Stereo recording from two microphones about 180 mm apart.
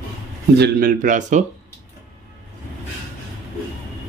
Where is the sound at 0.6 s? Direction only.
55° right (ahead or behind).